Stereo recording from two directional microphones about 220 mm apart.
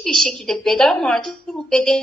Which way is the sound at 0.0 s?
Centre (ahead or behind).